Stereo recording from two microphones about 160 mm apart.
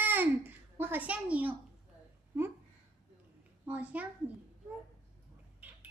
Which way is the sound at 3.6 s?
10° right (ahead or behind).